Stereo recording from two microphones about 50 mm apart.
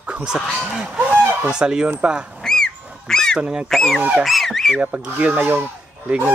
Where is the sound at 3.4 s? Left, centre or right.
Centre.